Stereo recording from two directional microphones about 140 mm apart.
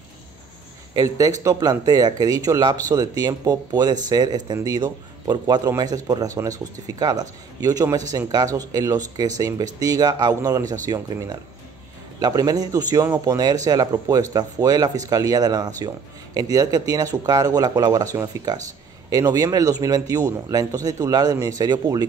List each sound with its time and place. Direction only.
0.9 s a man's voice: 25° right (ahead or behind)